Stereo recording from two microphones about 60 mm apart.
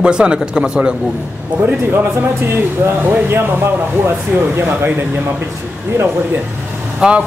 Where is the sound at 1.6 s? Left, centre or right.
Right.